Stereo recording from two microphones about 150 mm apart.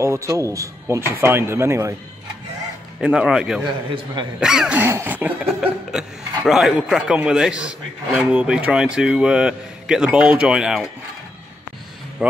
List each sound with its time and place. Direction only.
0.0 s speech: 20° right (ahead or behind)
1.2 s cough: 15° right (ahead or behind)
3.0 s a man's voice: 5° right (ahead or behind)
3.6 s a man's voice: 30° right (ahead or behind)
4.4 s cough: 5° right (ahead or behind)
5.5 s a man's voice: 5° right (ahead or behind)
12.2 s a man's voice: centre (ahead or behind)